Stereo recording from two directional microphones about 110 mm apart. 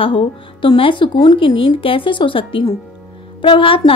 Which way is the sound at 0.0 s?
50° left (ahead or behind).